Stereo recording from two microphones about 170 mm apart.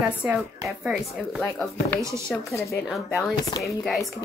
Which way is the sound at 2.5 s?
15° left (ahead or behind).